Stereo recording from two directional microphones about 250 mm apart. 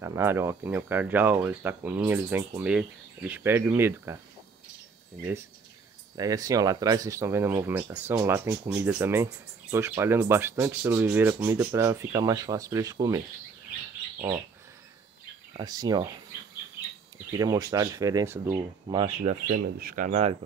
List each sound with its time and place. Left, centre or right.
0.0 s speech: centre
6.1 s speech: centre
15.5 s speech: centre
17.4 s speech: centre